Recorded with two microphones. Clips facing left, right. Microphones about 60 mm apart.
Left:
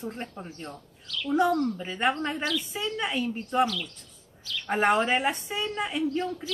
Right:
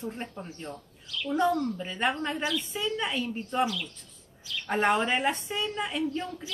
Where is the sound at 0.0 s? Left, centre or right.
Centre.